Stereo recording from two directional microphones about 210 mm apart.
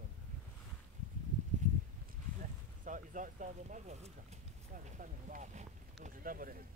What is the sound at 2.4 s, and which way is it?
Speech, 40° right (ahead or behind).